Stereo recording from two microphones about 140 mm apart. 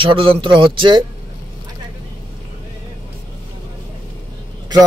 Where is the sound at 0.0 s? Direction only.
40° right (ahead or behind).